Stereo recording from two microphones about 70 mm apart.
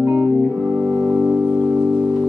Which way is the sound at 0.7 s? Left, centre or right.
Right.